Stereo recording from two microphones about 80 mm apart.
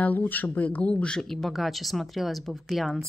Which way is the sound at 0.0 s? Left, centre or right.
Left.